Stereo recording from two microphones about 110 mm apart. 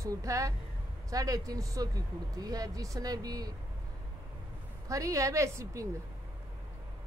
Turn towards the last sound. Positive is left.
turn(degrees=-25)  # may be behind; listen again after turning